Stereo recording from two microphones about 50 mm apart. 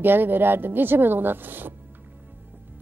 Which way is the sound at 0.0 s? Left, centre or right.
Right.